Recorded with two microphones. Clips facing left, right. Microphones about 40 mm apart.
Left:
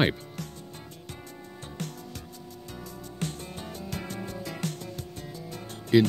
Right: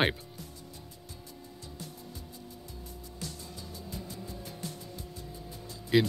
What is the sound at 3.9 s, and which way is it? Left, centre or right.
Music, left.